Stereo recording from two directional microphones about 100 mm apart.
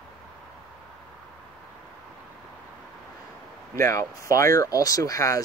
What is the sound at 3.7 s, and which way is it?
Speech, 30° left (ahead or behind).